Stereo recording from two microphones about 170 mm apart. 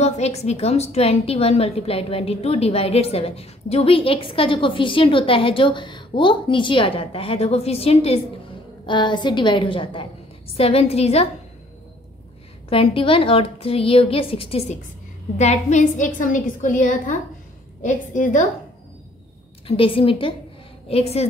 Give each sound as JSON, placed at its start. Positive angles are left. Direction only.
{"t": 0.0, "sound": "a woman's voice", "side_deg": 40}
{"t": 12.6, "sound": "a woman's voice", "side_deg": 35}
{"t": 19.8, "sound": "a woman's voice", "side_deg": 30}